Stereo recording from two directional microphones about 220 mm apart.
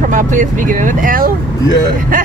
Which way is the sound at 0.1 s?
35° right (ahead or behind).